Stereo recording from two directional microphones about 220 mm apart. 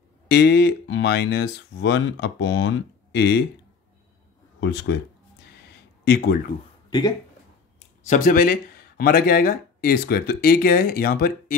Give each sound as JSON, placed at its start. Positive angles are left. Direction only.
{"t": 0.3, "sound": "speech", "side_deg": 50}
{"t": 4.6, "sound": "speech", "side_deg": 55}
{"t": 6.0, "sound": "speech", "side_deg": 50}
{"t": 6.9, "sound": "speech", "side_deg": 15}
{"t": 8.0, "sound": "speech", "side_deg": 35}